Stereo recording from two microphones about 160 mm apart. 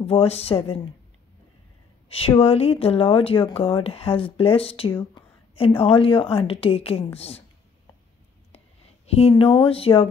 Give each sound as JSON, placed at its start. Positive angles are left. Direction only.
{"t": 0.0, "sound": "speech", "side_deg": 40}
{"t": 2.0, "sound": "a woman's voice", "side_deg": 35}
{"t": 9.0, "sound": "speech", "side_deg": 35}